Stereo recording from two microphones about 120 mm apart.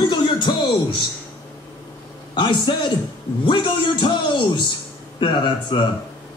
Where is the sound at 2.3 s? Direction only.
40° left (ahead or behind).